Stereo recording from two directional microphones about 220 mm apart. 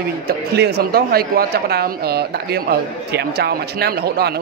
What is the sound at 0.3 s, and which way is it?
Speech, 45° right (ahead or behind).